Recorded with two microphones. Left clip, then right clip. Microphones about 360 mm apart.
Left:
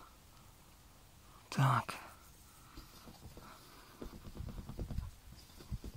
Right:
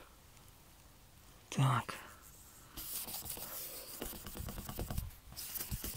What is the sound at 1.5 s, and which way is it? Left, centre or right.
Speech, centre.